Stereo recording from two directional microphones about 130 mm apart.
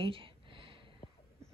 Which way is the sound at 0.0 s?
40° right (ahead or behind).